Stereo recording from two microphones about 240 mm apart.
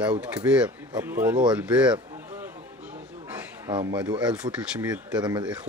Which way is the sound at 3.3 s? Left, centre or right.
Centre.